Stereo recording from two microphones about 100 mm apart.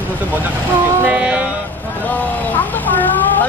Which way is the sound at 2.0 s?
15° left (ahead or behind).